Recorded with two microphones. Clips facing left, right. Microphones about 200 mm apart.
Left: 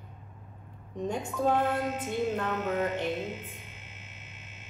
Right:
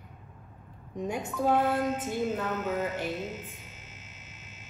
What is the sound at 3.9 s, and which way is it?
Music, 60° left (ahead or behind).